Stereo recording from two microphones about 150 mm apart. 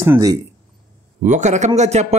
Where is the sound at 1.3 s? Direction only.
50° right (ahead or behind).